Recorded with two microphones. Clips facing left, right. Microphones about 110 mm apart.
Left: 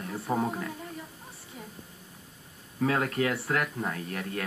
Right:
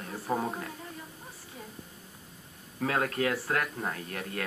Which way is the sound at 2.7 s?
35° left (ahead or behind).